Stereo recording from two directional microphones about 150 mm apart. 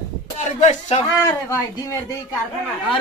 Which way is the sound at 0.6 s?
50° left (ahead or behind).